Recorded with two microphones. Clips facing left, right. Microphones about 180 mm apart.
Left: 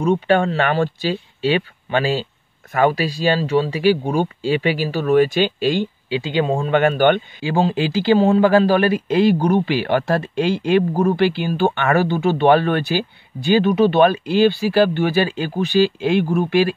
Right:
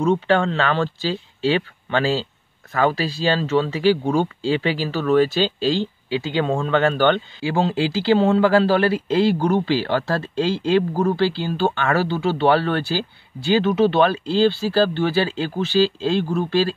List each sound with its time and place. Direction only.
0.1 s speech: 15° left (ahead or behind)